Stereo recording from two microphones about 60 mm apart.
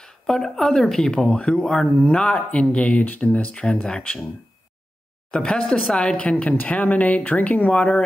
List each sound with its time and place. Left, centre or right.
0.0 s speech: centre
5.3 s speech: centre
6.3 s speech: left